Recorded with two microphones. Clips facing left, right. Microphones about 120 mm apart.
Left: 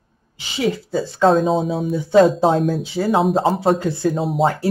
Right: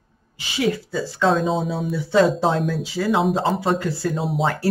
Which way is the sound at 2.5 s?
45° left (ahead or behind).